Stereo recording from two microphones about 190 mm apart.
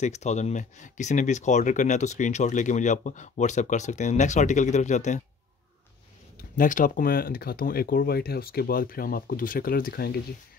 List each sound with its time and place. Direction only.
0.0 s speech: 35° left (ahead or behind)
6.3 s speech: 45° left (ahead or behind)